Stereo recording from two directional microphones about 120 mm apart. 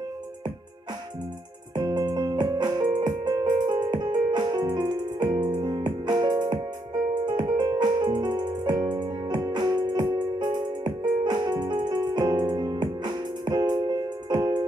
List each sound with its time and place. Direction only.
1.8 s music: 35° right (ahead or behind)